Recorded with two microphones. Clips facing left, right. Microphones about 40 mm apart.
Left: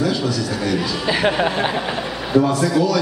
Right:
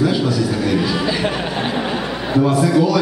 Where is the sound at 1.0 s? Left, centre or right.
Centre.